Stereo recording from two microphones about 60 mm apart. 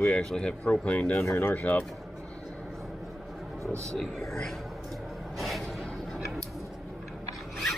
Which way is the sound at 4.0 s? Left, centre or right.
Centre.